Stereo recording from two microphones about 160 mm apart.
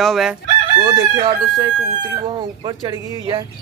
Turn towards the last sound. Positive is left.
turn(degrees=-30)  # may be behind; listen again after turning